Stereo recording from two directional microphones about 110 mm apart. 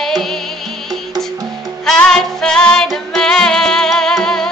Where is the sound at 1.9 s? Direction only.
5° left (ahead or behind).